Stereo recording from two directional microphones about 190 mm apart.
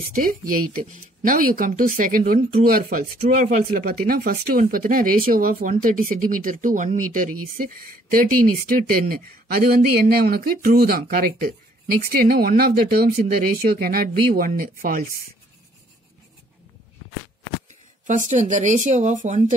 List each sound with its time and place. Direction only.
0.1 s speech: 45° right (ahead or behind)
18.0 s speech: 40° right (ahead or behind)